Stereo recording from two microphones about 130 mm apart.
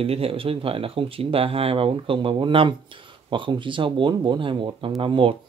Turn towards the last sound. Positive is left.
turn(degrees=-40)  # may be behind; listen again after turning